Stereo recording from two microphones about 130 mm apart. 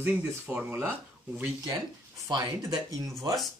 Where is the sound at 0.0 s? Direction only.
15° right (ahead or behind).